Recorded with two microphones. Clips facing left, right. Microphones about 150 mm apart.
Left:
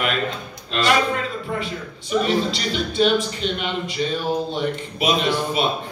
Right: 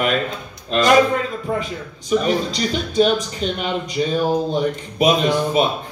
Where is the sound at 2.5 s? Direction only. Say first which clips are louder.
Right 2 dB; 45° right (ahead or behind).